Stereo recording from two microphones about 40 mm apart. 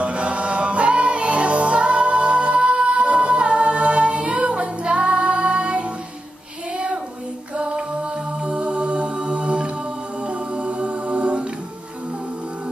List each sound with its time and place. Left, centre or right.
0.0 s music: right
7.5 s mantra: right